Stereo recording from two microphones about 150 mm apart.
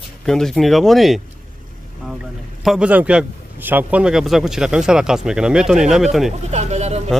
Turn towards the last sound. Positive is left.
turn(degrees=-45)  # may be behind; listen again after turning